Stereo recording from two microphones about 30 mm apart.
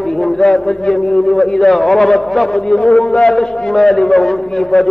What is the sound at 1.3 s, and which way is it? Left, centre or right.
Speech, centre.